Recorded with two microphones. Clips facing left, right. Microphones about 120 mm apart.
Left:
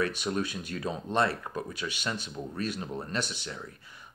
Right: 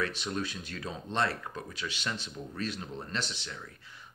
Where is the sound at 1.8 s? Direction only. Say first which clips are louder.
Left 3 dB; 25° left (ahead or behind).